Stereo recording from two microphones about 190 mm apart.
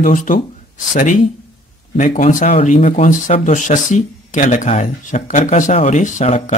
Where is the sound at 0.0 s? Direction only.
45° left (ahead or behind).